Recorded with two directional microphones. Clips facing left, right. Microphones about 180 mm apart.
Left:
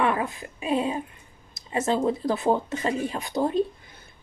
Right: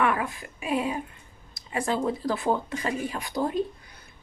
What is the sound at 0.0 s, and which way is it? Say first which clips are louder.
A woman's voice: left 1 dB; 25° left (ahead or behind).